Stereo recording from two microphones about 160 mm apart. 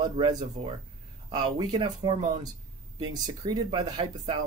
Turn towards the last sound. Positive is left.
turn(degrees=-30)  # may be behind; listen again after turning